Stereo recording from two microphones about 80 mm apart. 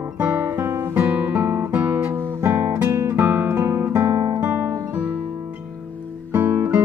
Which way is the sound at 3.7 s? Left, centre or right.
Right.